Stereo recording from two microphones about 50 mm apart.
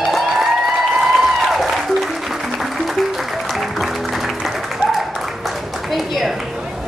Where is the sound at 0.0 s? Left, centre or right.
Centre.